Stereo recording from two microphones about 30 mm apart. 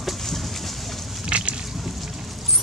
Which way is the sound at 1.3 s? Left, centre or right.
Right.